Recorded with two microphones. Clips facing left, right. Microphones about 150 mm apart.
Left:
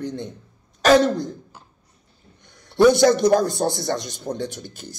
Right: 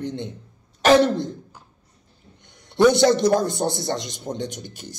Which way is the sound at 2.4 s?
20° right (ahead or behind).